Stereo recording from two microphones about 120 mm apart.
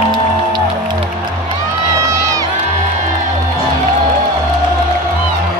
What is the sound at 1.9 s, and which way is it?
Crowd, 25° right (ahead or behind).